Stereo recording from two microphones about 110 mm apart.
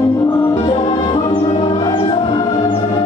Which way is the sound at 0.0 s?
35° left (ahead or behind).